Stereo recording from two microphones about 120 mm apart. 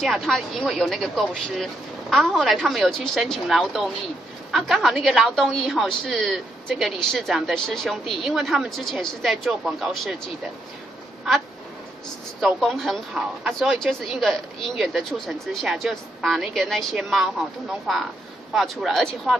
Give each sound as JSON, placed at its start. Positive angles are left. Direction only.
{"t": 0.0, "sound": "a woman's voice", "side_deg": 0}
{"t": 12.4, "sound": "a woman's voice", "side_deg": 0}